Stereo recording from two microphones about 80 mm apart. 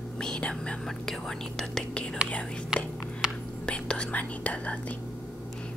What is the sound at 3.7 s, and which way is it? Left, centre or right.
Speech, centre.